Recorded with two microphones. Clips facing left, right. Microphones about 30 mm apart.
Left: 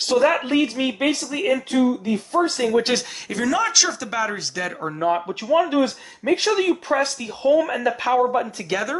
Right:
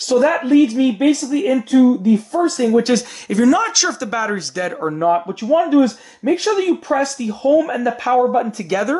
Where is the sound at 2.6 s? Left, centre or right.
Left.